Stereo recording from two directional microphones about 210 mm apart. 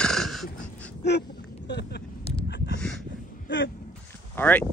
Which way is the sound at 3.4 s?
60° left (ahead or behind).